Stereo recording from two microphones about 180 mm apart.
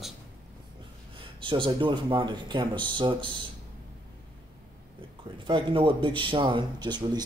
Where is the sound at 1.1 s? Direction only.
30° right (ahead or behind).